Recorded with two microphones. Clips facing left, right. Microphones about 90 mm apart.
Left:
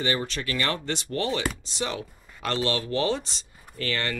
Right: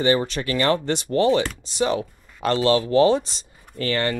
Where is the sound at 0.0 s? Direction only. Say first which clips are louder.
Right 7 dB; 25° right (ahead or behind).